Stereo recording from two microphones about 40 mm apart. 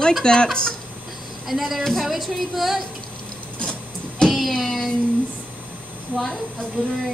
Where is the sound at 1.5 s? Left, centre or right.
Centre.